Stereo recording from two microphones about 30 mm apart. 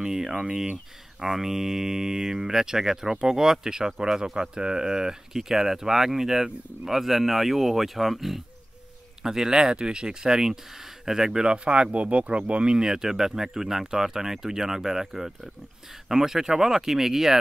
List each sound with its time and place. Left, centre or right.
0.0 s speech: centre
9.2 s speech: centre
11.5 s speech: right
12.7 s speech: centre